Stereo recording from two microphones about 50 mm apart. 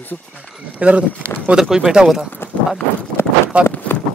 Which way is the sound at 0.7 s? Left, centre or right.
Right.